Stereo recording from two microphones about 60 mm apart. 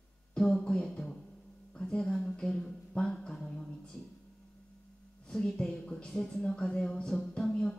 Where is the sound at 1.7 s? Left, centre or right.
Centre.